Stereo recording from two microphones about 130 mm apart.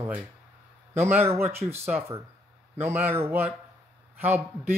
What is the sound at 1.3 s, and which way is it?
Speech, 20° right (ahead or behind).